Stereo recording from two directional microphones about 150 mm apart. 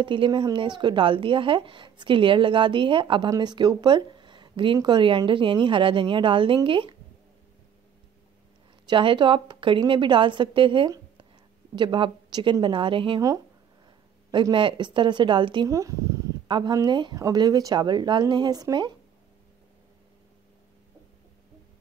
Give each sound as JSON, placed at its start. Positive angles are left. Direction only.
{"t": 0.0, "sound": "speech", "side_deg": -35}
{"t": 8.8, "sound": "speech", "side_deg": -30}
{"t": 14.3, "sound": "speech", "side_deg": -35}